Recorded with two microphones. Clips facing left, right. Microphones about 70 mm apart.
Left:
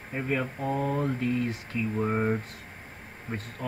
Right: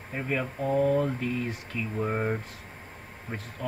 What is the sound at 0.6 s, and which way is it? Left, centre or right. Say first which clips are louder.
Speech: right 6 dB; left.